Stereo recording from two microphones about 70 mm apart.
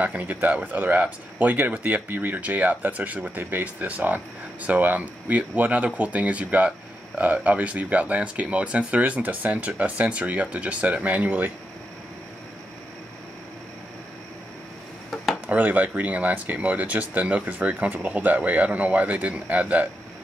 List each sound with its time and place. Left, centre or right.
0.0 s speech: right
15.4 s speech: right